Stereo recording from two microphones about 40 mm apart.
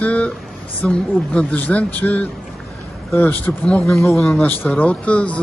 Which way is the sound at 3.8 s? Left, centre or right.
Centre.